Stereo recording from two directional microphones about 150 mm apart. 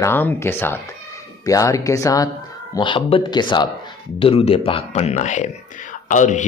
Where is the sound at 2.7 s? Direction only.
35° left (ahead or behind).